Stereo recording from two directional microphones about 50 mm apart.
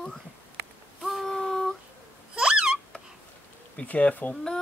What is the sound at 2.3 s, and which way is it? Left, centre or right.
Hiccup, centre.